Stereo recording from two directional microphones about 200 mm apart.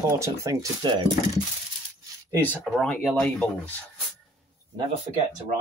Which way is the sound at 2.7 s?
5° left (ahead or behind).